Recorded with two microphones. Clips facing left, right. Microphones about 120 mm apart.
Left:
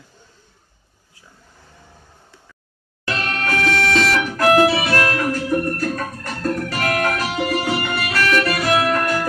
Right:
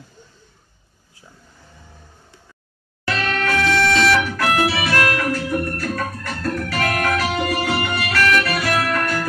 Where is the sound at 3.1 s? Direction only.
40° left (ahead or behind).